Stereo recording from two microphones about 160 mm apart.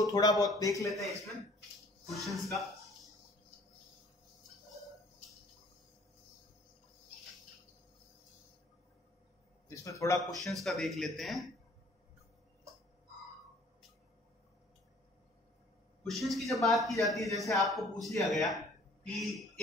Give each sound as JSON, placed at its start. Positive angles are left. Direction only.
{"t": 0.0, "sound": "a man's voice", "side_deg": 25}
{"t": 2.0, "sound": "speech", "side_deg": 0}
{"t": 9.7, "sound": "a man's voice", "side_deg": 20}
{"t": 10.3, "sound": "speech", "side_deg": 0}
{"t": 16.1, "sound": "speech", "side_deg": 0}